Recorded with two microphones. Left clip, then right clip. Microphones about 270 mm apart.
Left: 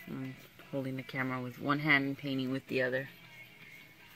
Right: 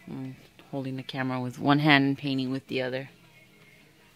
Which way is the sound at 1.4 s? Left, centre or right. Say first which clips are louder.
Right 12 dB; right.